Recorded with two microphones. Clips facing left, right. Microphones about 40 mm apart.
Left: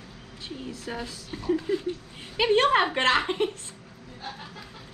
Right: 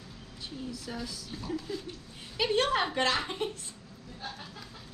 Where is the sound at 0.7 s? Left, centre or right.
Left.